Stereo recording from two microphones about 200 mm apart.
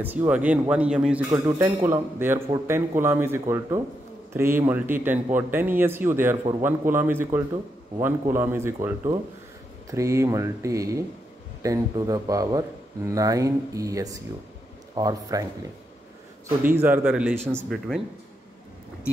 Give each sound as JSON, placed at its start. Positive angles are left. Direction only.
{"t": 0.0, "sound": "speech", "side_deg": -10}
{"t": 16.4, "sound": "speech", "side_deg": -10}
{"t": 17.6, "sound": "speech", "side_deg": 0}